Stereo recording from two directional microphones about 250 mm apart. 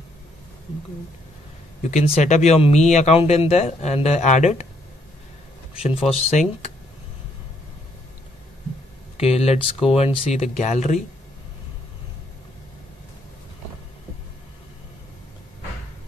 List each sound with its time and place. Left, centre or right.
1.8 s speech: left
5.8 s speech: left
9.1 s speech: left